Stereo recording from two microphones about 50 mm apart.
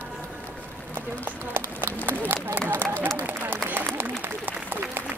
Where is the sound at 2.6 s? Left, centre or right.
Right.